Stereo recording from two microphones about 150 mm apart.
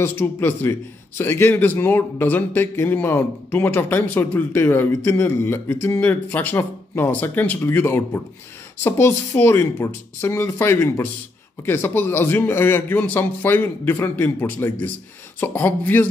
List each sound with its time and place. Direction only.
0.0 s a man's voice: 15° left (ahead or behind)